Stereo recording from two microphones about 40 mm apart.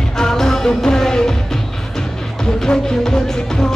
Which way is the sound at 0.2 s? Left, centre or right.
Centre.